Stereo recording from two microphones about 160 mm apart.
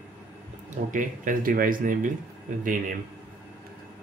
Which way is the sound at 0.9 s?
55° right (ahead or behind).